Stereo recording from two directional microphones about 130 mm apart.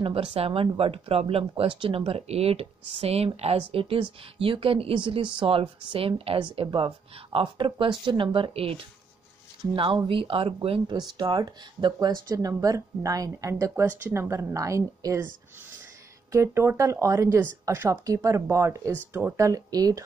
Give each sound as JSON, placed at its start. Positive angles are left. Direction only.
{"t": 0.0, "sound": "speech", "side_deg": -45}
{"t": 16.3, "sound": "speech", "side_deg": -20}